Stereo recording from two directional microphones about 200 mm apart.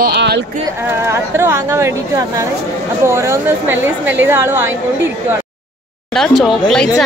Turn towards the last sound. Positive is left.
turn(degrees=0)  # may be behind; listen again after turning